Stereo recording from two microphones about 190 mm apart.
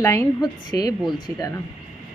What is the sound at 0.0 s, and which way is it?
Speech, 15° left (ahead or behind).